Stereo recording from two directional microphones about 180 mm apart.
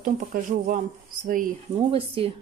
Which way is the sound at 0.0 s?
50° right (ahead or behind).